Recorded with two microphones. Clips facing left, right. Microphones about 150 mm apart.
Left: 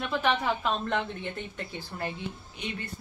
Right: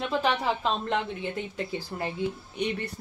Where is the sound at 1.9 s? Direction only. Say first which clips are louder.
Even; 20° right (ahead or behind).